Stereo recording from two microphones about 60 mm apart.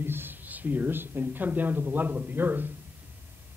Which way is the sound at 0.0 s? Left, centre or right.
Right.